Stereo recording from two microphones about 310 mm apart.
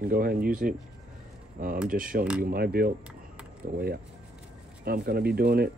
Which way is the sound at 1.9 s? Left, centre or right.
Right.